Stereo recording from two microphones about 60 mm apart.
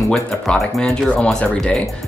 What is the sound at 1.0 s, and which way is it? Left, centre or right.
Speech, left.